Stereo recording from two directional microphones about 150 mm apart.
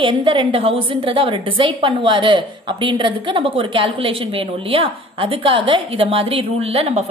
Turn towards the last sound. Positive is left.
turn(degrees=-45)  # may be behind; listen again after turning